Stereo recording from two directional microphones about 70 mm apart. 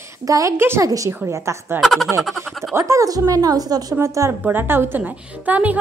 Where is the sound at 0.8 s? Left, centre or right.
Right.